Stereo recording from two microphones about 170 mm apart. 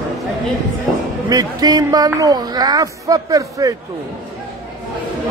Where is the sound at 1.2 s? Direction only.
20° right (ahead or behind).